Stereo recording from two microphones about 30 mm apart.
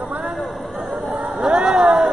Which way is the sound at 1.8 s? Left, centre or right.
Right.